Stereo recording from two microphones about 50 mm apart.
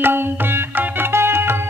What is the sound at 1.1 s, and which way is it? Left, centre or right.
Music, right.